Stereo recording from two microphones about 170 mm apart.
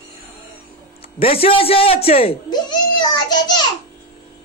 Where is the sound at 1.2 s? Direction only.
35° left (ahead or behind).